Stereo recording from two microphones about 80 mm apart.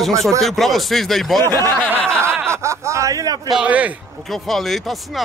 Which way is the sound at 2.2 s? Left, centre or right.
Right.